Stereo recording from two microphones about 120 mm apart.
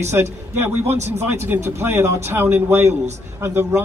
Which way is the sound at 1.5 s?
20° right (ahead or behind).